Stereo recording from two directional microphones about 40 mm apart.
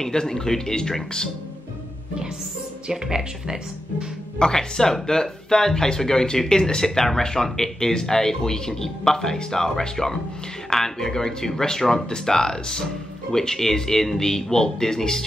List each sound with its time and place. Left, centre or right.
0.0 s speech: centre
2.9 s speech: centre
4.4 s speech: centre